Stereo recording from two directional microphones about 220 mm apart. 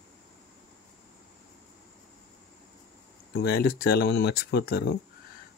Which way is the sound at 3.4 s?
45° left (ahead or behind).